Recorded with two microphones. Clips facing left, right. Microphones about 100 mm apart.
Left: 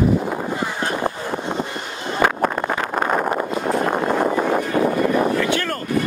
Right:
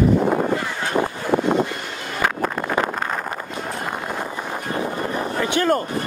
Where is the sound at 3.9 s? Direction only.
60° left (ahead or behind).